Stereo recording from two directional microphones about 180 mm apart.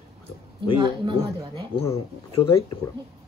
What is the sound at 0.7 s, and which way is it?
Speech, 25° right (ahead or behind).